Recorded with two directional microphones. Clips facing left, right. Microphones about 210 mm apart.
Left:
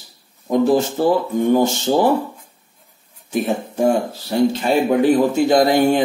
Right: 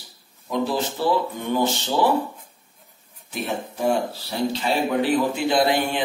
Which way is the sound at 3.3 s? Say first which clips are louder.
Left 8 dB; 45° left (ahead or behind).